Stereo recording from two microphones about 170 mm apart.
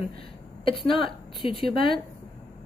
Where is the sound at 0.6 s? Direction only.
30° left (ahead or behind).